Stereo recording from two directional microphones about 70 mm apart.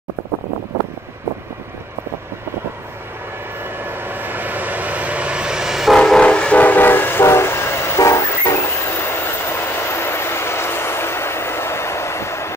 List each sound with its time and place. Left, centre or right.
3.8 s vehicle: right; by 5.9 s centre
5.9 s train: centre; by 8.2 s left
9.5 s train: left